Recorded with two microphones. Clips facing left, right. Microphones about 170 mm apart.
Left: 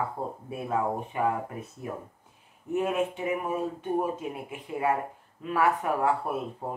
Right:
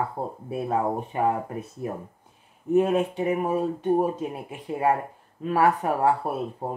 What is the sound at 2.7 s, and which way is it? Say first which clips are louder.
Speech: right 6 dB; 35° right (ahead or behind).